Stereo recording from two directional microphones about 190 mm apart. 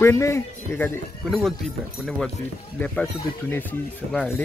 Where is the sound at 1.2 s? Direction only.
Centre (ahead or behind).